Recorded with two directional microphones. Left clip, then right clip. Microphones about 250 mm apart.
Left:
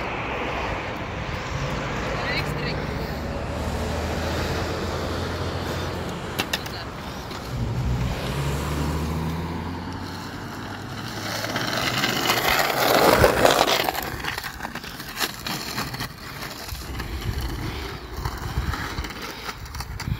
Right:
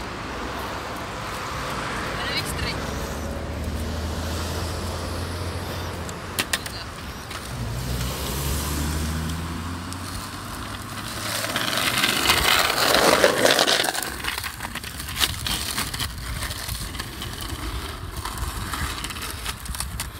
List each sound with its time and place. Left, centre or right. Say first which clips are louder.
1.7 s boat: left 2 dB; right
4.1 s vehicle: left 4 dB; left
11.2 s vehicle: right 1 dB; centre
15.1 s a sound: right 4 dB; centre